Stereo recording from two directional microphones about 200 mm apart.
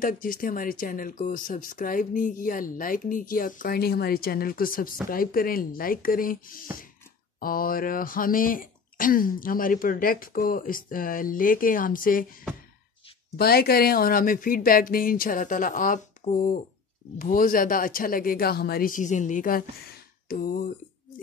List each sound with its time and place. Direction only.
0.0 s speech: 45° left (ahead or behind)
13.4 s speech: 50° left (ahead or behind)